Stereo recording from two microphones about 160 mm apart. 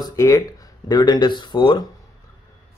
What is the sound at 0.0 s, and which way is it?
Speech, 20° left (ahead or behind).